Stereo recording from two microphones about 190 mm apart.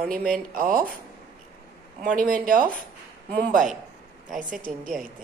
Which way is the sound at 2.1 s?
45° right (ahead or behind).